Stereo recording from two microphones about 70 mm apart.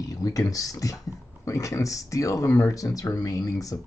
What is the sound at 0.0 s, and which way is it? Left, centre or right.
Speech, left.